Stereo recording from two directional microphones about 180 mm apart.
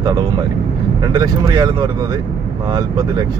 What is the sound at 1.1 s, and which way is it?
Speech, 20° right (ahead or behind).